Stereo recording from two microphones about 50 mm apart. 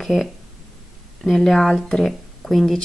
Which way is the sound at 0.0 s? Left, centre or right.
Centre.